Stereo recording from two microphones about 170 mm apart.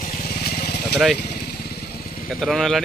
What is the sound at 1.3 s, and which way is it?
Motorcycle, 70° left (ahead or behind).